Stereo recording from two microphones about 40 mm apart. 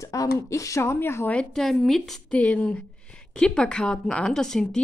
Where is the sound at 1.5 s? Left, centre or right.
Centre.